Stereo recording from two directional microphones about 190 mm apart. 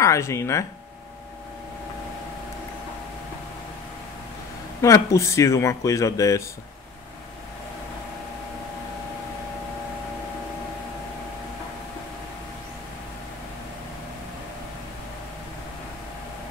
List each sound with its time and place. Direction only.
0.0 s speech: 15° left (ahead or behind)
4.8 s speech: 15° left (ahead or behind)